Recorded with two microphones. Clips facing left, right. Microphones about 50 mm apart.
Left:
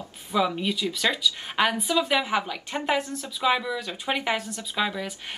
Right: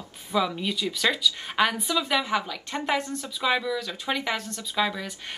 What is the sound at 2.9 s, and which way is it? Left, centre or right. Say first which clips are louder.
Speech: left 1 dB; centre.